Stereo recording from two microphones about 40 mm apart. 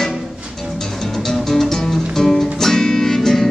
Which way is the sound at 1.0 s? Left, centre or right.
Centre.